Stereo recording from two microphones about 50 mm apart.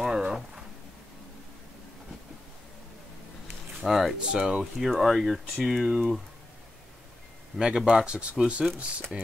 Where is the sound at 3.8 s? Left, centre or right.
Centre.